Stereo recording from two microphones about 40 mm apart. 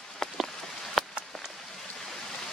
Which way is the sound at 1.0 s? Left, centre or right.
Centre.